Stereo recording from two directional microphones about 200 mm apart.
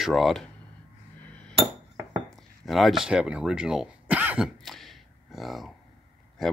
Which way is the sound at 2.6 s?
Centre (ahead or behind).